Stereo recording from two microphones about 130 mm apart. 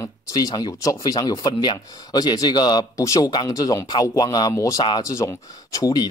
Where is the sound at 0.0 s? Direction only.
30° left (ahead or behind).